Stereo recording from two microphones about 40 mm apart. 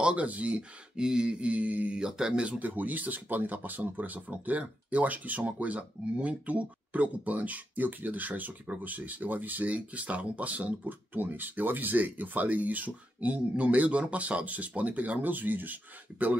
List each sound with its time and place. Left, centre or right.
0.0 s speech: right
0.9 s mantra: centre; by 2.0 s right
2.0 s mantra: centre
2.6 s speech: right
9.8 s speech: right